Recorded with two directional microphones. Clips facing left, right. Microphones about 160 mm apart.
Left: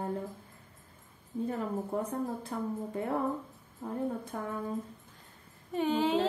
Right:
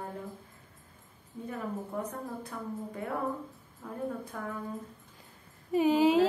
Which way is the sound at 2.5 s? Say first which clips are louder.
Left 5 dB; 30° left (ahead or behind).